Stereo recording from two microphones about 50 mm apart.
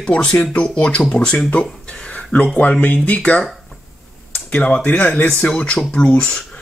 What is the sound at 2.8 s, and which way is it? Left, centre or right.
Speech, left.